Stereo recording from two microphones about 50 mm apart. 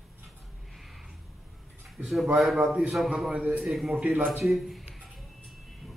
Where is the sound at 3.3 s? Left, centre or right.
Right.